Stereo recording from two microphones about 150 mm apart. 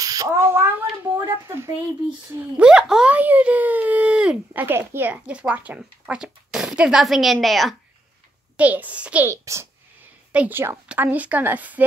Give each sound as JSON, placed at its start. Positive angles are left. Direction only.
{"t": 0.0, "sound": "speech", "side_deg": -25}
{"t": 2.6, "sound": "speech", "side_deg": -5}
{"t": 8.5, "sound": "speech", "side_deg": -10}
{"t": 9.3, "sound": "a child's voice", "side_deg": -20}